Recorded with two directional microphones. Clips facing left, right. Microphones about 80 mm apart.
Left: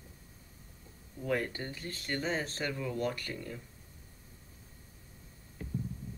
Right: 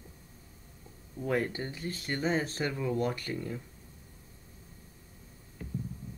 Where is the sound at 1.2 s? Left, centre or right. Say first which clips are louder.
Right 3 dB; centre.